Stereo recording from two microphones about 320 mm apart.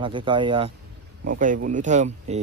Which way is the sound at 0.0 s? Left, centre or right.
Centre.